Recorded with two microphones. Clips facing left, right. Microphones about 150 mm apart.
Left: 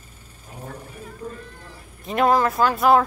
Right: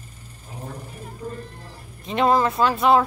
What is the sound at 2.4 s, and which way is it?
Speech, 25° right (ahead or behind).